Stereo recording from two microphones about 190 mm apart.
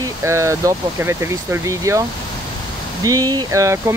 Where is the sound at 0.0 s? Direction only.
15° right (ahead or behind).